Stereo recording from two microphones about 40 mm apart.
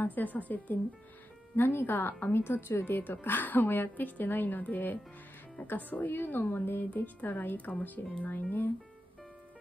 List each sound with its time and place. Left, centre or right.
0.0 s a woman's voice: left
1.6 s speech: left
2.0 s a woman's voice: left
7.2 s a woman's voice: left